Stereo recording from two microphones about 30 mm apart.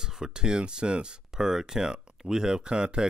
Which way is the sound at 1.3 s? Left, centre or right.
Centre.